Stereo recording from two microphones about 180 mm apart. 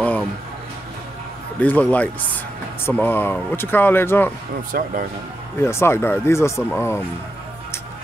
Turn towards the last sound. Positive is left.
turn(degrees=15)  # may be behind; listen again after turning